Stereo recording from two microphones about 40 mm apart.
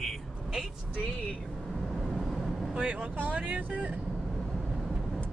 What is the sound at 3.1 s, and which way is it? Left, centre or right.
Speech, right.